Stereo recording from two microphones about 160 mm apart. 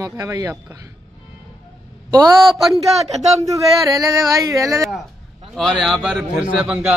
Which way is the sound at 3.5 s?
20° right (ahead or behind).